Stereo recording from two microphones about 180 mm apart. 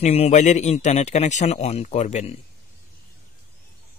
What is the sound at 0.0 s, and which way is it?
Speech, 35° left (ahead or behind).